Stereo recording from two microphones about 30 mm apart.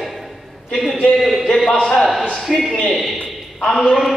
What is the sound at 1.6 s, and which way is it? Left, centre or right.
Speech, centre.